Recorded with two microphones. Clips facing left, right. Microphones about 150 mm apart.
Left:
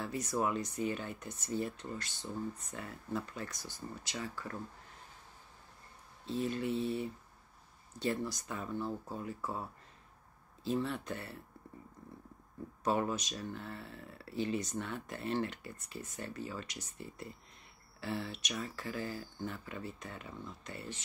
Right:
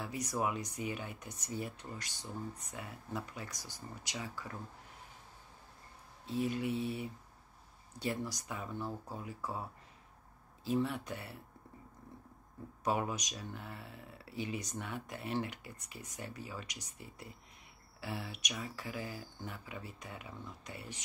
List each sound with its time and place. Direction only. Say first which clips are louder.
0.0 s speech: left 2 dB; 10° right (ahead or behind)
6.2 s speech: even; 10° right (ahead or behind)
12.8 s speech: left 2 dB; 10° right (ahead or behind)